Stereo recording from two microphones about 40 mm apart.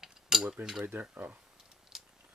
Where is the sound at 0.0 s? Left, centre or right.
Centre.